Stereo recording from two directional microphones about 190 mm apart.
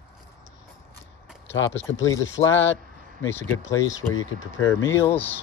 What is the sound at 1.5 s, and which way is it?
Speech, 75° left (ahead or behind).